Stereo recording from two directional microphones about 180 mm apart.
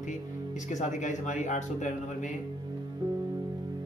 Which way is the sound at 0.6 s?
40° left (ahead or behind).